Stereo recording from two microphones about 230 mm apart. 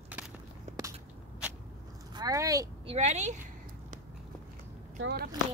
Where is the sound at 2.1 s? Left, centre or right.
Centre.